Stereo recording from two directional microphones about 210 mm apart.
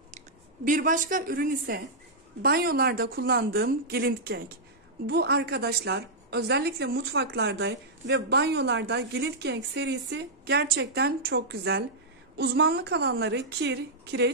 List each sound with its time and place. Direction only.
0.7 s a woman's voice: 40° right (ahead or behind); by 14.3 s 55° right (ahead or behind)